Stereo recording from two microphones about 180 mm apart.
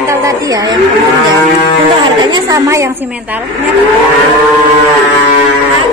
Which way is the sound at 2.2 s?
20° right (ahead or behind).